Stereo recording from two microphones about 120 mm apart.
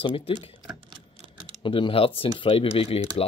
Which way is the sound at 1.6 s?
45° left (ahead or behind).